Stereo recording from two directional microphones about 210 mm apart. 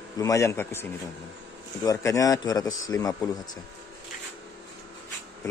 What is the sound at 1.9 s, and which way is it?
Speech, 15° left (ahead or behind).